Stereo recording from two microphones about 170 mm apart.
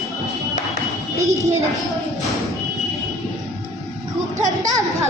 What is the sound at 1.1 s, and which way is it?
Speech, 20° right (ahead or behind).